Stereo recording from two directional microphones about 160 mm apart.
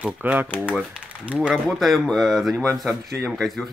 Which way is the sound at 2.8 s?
Centre (ahead or behind).